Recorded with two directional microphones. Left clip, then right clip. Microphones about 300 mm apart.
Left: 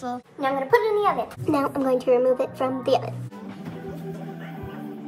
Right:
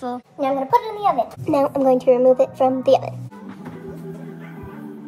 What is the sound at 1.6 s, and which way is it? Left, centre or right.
Speech, right.